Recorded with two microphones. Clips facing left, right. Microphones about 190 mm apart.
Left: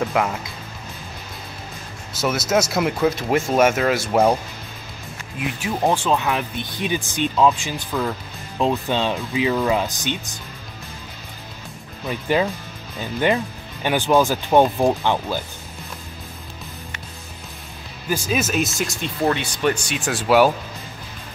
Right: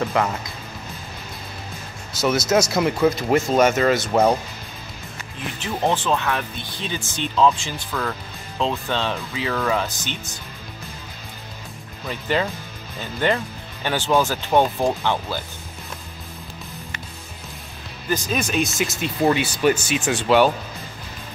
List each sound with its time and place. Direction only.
0.0 s speech: 5° left (ahead or behind)
2.2 s speech: 5° left (ahead or behind)
5.6 s speech: 15° left (ahead or behind)
12.1 s speech: 15° left (ahead or behind)
18.1 s speech: 5° left (ahead or behind)